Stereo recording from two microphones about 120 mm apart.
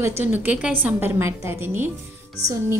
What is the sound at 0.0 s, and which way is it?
A woman's voice, 15° right (ahead or behind).